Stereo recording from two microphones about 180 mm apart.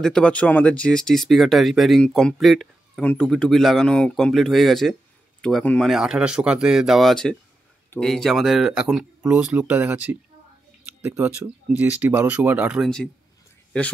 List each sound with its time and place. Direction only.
0.0 s speech: 5° left (ahead or behind)